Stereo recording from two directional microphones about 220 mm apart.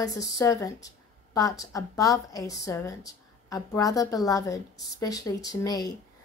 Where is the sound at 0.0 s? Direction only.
15° left (ahead or behind).